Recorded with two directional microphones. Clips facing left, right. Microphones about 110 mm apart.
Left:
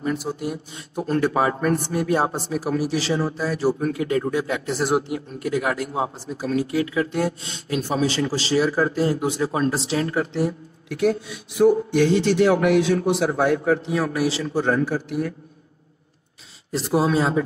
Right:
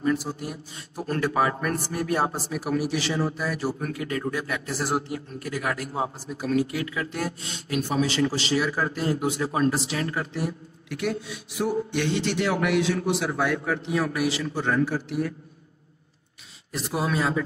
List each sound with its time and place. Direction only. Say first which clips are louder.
0.0 s speech: left 1 dB; 25° left (ahead or behind)
2.6 s a man's voice: left 1 dB; 35° left (ahead or behind)
10.9 s a man's voice: left 7 dB; 45° left (ahead or behind)
16.7 s speech: left 7 dB; 30° left (ahead or behind)